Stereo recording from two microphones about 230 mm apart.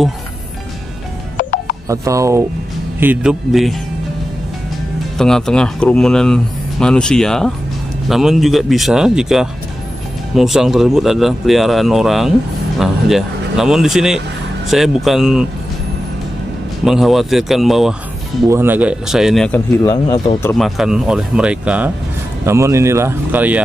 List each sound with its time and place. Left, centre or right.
1.4 s music: left
1.9 s speech: centre
5.1 s speech: centre
16.8 s speech: centre
20.5 s speech: centre